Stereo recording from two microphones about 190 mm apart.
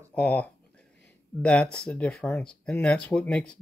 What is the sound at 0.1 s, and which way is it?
Speech, 5° left (ahead or behind).